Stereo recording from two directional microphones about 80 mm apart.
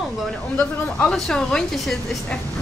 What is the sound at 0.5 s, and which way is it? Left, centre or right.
A woman's voice, centre.